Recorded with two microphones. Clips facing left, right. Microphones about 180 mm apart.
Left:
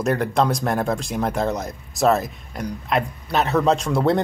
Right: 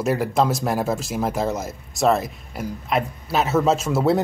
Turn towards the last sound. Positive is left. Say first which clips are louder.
# even
turn(degrees=-5)  # may be behind; listen again after turning